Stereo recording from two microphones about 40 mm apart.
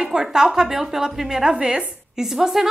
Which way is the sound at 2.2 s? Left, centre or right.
Centre.